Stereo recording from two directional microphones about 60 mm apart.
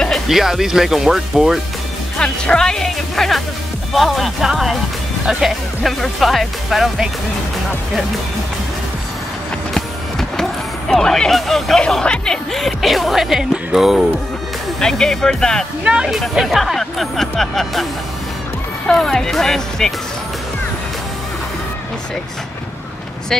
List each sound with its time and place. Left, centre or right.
0.3 s speech: centre
2.1 s speech: centre
9.8 s music: centre
11.8 s speech: centre
12.5 s speech: centre
14.8 s speech: centre
15.8 s speech: centre
16.1 s speech: centre
18.9 s speech: centre